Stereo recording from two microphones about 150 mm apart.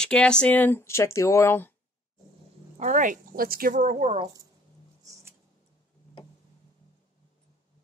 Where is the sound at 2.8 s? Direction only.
55° right (ahead or behind).